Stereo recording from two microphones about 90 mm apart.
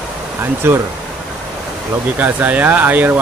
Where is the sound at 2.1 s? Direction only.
20° right (ahead or behind).